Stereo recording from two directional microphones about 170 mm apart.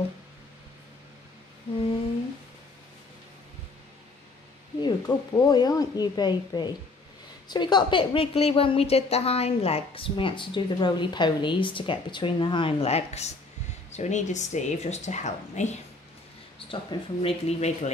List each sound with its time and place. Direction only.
4.8 s a woman's voice: 25° left (ahead or behind); by 15.7 s 40° left (ahead or behind)
16.5 s a woman's voice: 30° left (ahead or behind)